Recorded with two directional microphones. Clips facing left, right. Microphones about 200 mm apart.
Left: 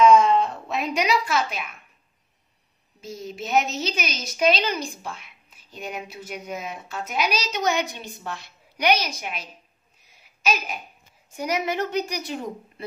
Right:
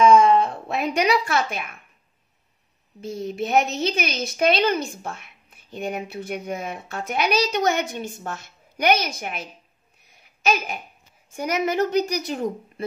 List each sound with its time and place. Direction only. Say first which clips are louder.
0.3 s speech: right 2 dB; 55° right (ahead or behind)
3.0 s a woman's voice: right 6 dB; 55° right (ahead or behind)
11.3 s a woman's voice: right 3 dB; 50° right (ahead or behind)